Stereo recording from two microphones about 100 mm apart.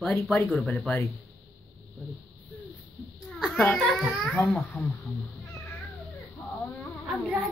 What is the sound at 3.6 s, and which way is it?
A child's voice, 5° left (ahead or behind).